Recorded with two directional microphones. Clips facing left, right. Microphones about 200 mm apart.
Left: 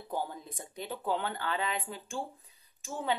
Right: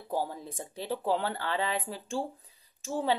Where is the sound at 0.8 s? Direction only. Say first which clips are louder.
Right 4 dB; 35° right (ahead or behind).